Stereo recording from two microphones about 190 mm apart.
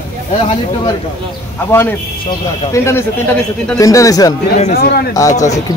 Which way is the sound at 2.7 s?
15° left (ahead or behind).